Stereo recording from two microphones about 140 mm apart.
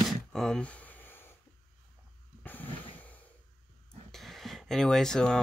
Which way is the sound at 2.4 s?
10° left (ahead or behind).